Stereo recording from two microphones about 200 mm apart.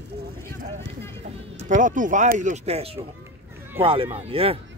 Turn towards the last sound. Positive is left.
turn(degrees=-30)  # may be behind; listen again after turning